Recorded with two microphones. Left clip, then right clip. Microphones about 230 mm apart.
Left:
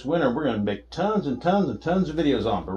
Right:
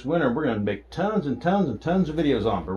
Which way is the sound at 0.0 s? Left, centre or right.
Centre.